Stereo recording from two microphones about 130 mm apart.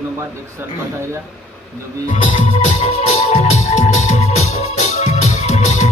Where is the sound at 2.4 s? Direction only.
60° left (ahead or behind).